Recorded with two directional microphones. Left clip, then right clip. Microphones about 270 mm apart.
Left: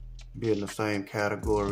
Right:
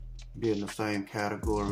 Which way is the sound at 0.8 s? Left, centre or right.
Left.